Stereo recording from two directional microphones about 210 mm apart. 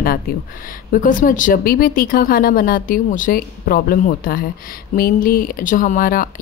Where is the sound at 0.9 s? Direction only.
40° left (ahead or behind).